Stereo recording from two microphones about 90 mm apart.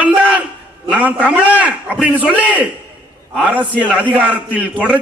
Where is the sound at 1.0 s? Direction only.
15° right (ahead or behind).